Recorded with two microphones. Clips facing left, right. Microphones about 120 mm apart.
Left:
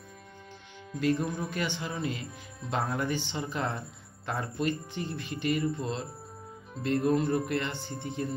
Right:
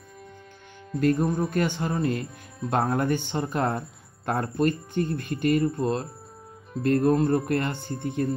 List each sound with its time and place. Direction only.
0.9 s speech: 45° right (ahead or behind)